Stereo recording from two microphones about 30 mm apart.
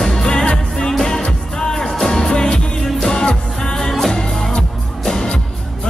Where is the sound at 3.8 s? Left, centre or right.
Centre.